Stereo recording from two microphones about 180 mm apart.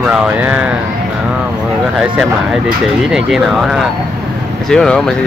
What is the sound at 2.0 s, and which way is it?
Speech, centre (ahead or behind).